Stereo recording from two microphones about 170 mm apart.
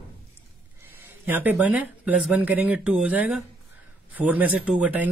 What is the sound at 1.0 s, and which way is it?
Speech, 10° right (ahead or behind).